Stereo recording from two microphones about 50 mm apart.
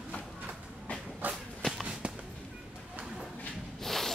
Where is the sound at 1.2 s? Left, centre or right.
Right.